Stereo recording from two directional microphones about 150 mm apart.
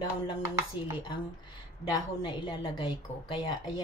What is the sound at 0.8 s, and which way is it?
A woman's voice, 35° left (ahead or behind).